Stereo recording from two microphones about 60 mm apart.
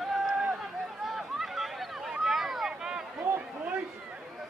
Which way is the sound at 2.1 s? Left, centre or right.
Centre.